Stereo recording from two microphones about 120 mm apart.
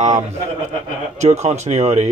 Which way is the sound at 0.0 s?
75° right (ahead or behind).